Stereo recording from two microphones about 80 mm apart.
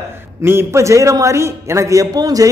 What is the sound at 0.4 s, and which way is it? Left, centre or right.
A man's voice, right.